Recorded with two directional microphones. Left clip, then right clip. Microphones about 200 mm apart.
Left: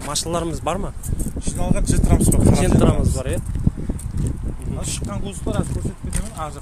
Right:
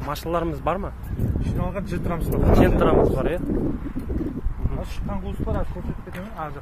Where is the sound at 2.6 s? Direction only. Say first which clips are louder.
Right 2 dB; 10° left (ahead or behind).